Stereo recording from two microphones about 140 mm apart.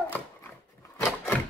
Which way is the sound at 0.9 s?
15° left (ahead or behind).